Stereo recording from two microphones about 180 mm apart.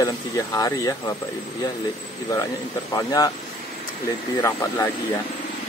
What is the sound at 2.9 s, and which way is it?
Speech, 20° left (ahead or behind).